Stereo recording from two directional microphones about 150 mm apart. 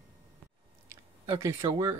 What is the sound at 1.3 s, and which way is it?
Speech, 20° right (ahead or behind).